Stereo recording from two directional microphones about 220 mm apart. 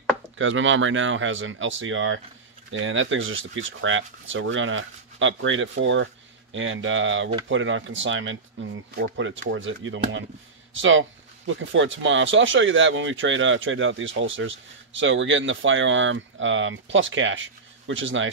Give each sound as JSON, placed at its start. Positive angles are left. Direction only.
{"t": 0.4, "sound": "speech", "side_deg": -60}